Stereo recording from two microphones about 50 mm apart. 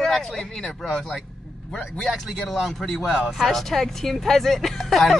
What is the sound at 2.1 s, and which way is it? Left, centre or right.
Speech, centre.